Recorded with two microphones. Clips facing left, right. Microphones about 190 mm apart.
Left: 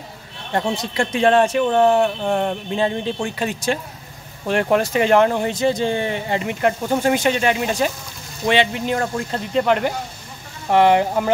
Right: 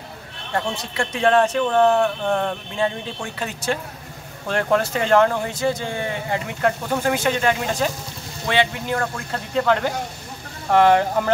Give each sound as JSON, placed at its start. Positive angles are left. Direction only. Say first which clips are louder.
{"t": 0.6, "sound": "speech", "louder": "left 4 dB", "side_deg": 20}
{"t": 2.8, "sound": "speech", "louder": "left 3 dB", "side_deg": 30}
{"t": 4.5, "sound": "speech", "louder": "left 2 dB", "side_deg": 15}